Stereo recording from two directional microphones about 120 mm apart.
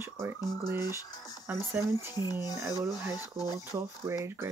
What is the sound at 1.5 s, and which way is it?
Speech, 15° right (ahead or behind).